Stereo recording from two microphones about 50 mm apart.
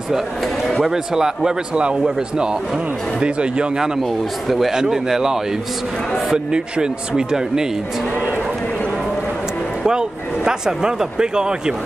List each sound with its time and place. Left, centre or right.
0.8 s a man's voice: centre
4.5 s a man's voice: centre
9.8 s speech: centre